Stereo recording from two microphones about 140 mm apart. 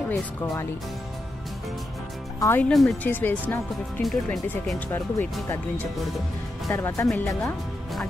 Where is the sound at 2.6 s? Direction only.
5° left (ahead or behind).